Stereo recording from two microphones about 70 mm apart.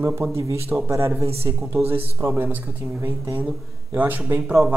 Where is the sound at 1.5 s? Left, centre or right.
Right.